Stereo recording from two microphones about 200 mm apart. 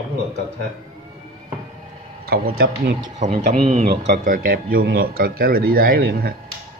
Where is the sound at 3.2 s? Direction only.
35° right (ahead or behind).